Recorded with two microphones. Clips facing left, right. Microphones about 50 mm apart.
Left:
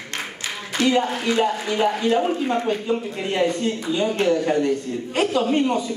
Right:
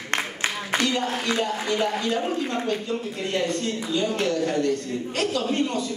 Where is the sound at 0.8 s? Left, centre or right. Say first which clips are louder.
Left 9 dB; centre.